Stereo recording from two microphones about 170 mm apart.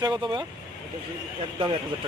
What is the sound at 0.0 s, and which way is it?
Speech, 25° right (ahead or behind).